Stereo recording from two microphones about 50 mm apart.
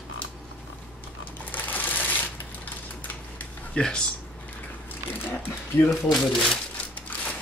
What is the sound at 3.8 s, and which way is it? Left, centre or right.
Speech, centre.